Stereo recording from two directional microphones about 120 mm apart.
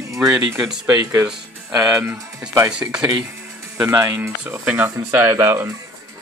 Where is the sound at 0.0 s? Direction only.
25° right (ahead or behind).